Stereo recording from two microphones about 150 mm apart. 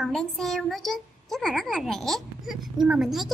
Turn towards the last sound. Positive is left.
turn(degrees=-5)  # may be behind; listen again after turning